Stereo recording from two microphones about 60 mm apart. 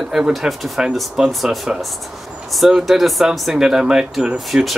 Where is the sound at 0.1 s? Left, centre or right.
Centre.